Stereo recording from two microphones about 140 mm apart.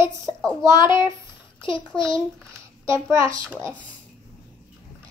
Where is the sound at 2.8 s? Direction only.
20° right (ahead or behind).